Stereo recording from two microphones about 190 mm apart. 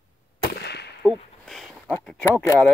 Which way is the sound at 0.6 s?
60° left (ahead or behind).